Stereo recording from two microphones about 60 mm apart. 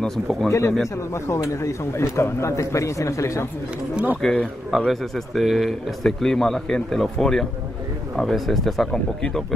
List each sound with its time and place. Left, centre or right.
0.0 s speech: centre
0.5 s a man's voice: left
4.2 s speech: centre
4.6 s speech: centre